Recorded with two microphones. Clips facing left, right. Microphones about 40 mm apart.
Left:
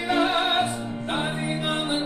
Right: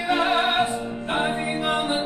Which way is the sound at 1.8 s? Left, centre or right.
Right.